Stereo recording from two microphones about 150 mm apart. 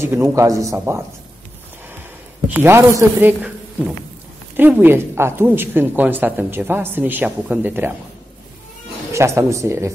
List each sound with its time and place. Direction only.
0.0 s speech: 15° right (ahead or behind)
2.4 s speech: 15° right (ahead or behind)
4.6 s speech: 10° right (ahead or behind)
9.1 s speech: 20° right (ahead or behind)